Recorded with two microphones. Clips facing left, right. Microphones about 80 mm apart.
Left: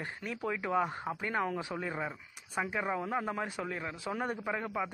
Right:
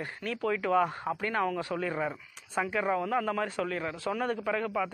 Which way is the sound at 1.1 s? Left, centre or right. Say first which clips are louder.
Right 4 dB; right.